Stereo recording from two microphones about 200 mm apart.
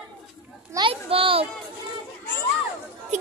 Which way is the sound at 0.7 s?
25° right (ahead or behind).